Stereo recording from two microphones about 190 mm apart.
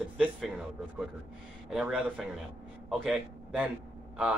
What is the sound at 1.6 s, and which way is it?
A man's voice, 5° right (ahead or behind).